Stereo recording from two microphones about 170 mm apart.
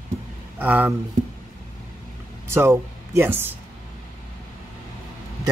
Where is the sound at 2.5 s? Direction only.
15° right (ahead or behind).